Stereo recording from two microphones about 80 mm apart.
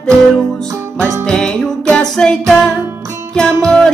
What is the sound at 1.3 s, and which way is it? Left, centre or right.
Music, centre.